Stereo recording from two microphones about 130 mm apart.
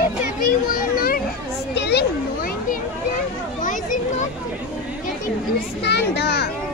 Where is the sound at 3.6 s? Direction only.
80° left.